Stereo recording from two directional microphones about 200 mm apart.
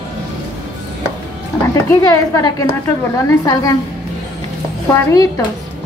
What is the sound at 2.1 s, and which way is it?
A woman's voice, 15° left (ahead or behind).